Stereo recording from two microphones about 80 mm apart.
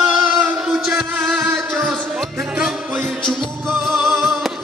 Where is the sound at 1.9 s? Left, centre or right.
Centre.